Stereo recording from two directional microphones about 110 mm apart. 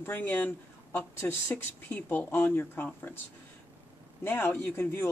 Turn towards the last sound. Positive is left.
turn(degrees=20)  # may be behind; listen again after turning